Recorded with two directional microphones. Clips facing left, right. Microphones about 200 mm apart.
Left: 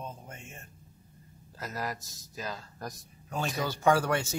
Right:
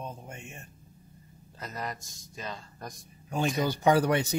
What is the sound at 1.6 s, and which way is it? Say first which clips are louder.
A man's voice: left 1 dB; centre (ahead or behind).